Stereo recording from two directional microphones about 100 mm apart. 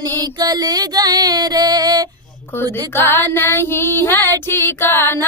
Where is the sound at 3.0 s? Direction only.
20° left (ahead or behind).